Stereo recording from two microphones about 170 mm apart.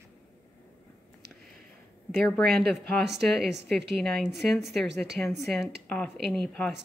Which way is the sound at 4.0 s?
Centre (ahead or behind).